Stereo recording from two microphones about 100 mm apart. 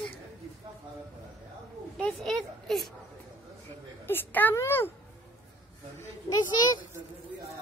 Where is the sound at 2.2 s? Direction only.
Centre (ahead or behind).